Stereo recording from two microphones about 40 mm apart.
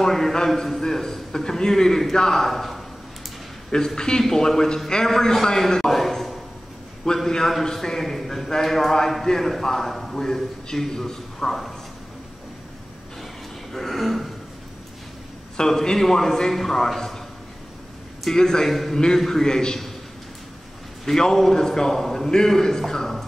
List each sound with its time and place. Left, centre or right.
0.0 s a man's voice: centre
3.7 s a man's voice: centre
13.2 s a sound: centre
15.5 s a man's voice: centre
18.3 s a man's voice: centre
21.0 s a man's voice: centre